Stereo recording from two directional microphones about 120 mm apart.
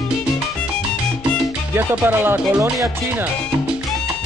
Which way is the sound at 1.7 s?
15° right (ahead or behind).